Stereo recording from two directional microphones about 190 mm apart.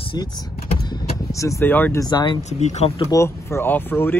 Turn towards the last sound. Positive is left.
turn(degrees=10)  # may be behind; listen again after turning